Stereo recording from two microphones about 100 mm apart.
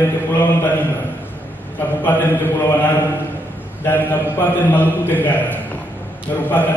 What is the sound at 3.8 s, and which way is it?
A man's voice, 20° left (ahead or behind).